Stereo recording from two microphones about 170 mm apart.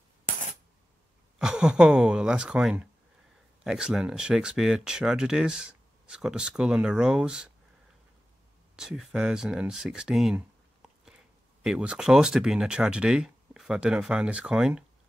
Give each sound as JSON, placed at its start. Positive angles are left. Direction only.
{"t": 1.4, "sound": "speech", "side_deg": -5}
{"t": 8.7, "sound": "speech", "side_deg": -5}